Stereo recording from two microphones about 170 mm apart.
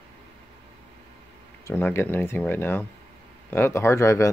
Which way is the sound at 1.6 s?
15° left (ahead or behind).